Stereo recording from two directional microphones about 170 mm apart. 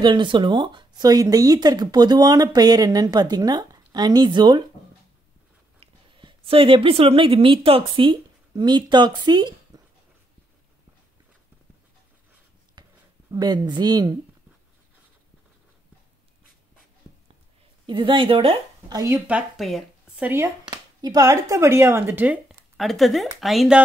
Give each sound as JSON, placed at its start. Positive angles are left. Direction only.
{"t": 0.0, "sound": "speech", "side_deg": -30}
{"t": 5.8, "sound": "a woman's voice", "side_deg": -30}
{"t": 9.7, "sound": "a sound", "side_deg": -25}
{"t": 12.8, "sound": "a sound", "side_deg": -25}
{"t": 13.3, "sound": "speech", "side_deg": -25}
{"t": 17.8, "sound": "speech", "side_deg": -25}
{"t": 18.9, "sound": "speech", "side_deg": -15}
{"t": 20.2, "sound": "speech", "side_deg": -15}
{"t": 20.6, "sound": "speech", "side_deg": -25}